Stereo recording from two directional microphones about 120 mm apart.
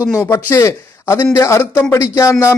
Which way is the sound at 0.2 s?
25° left (ahead or behind).